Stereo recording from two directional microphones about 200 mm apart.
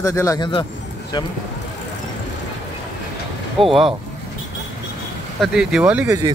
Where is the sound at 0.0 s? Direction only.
15° left (ahead or behind).